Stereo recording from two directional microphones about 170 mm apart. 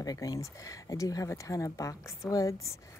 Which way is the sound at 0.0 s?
20° left (ahead or behind).